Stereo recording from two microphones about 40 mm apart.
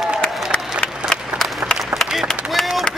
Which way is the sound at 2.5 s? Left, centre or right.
Centre.